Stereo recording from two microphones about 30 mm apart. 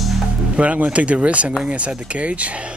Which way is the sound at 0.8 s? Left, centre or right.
Right.